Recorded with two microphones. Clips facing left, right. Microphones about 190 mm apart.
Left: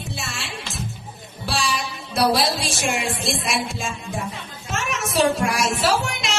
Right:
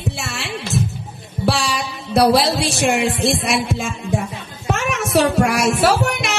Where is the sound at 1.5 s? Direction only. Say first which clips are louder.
Right 5 dB; 65° right (ahead or behind).